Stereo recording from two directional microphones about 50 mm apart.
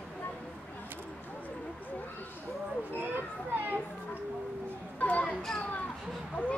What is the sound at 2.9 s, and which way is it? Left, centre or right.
Children playing, right.